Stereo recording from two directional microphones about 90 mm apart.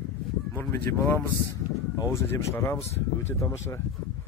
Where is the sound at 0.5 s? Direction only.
25° left (ahead or behind).